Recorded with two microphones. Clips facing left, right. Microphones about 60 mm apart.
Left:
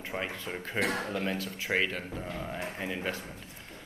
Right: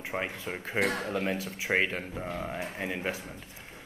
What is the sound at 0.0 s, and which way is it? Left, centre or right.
Speech, centre.